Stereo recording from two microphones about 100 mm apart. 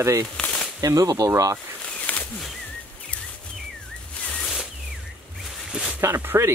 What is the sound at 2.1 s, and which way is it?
Wild animals, 15° left (ahead or behind).